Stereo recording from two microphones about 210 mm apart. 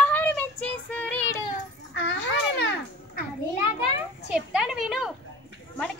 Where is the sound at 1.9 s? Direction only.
60° left (ahead or behind).